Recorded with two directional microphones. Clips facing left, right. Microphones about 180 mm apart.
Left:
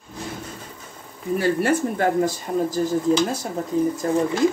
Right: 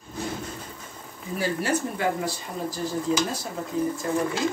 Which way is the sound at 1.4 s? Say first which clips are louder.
Left 5 dB; 50° left (ahead or behind).